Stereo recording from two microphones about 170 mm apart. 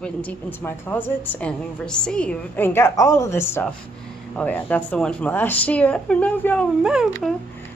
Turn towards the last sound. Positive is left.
turn(degrees=-5)  # may be behind; listen again after turning